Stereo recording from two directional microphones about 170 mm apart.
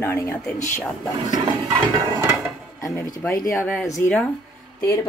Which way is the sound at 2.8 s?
20° left (ahead or behind).